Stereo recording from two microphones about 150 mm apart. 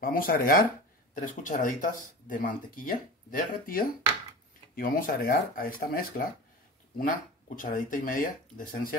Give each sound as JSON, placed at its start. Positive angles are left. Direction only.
{"t": 0.0, "sound": "speech", "side_deg": 70}
{"t": 1.2, "sound": "speech", "side_deg": 60}
{"t": 7.0, "sound": "speech", "side_deg": 65}